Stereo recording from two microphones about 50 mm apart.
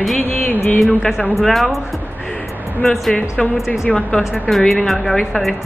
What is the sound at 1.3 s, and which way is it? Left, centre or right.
Speech, centre.